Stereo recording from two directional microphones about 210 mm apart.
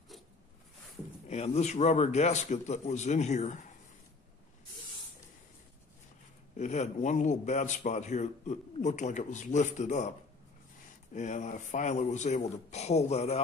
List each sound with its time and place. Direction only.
1.3 s a man's voice: 30° left (ahead or behind)
6.5 s a man's voice: 35° left (ahead or behind)
11.1 s a man's voice: 35° left (ahead or behind)